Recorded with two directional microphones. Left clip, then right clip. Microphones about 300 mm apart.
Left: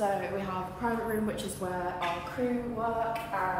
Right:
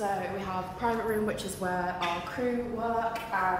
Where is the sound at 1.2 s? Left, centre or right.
Right.